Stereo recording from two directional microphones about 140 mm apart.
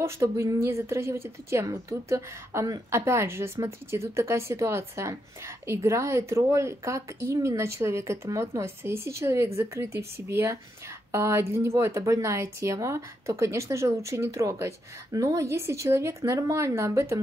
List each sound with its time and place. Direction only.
0.0 s a woman's voice: 20° right (ahead or behind)